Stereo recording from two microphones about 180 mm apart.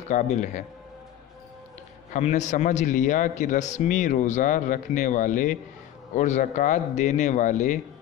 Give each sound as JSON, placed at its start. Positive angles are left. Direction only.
{"t": 0.1, "sound": "a man's voice", "side_deg": 45}
{"t": 2.1, "sound": "a man's voice", "side_deg": 40}